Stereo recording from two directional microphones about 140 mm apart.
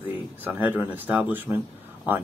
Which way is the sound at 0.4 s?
10° right (ahead or behind).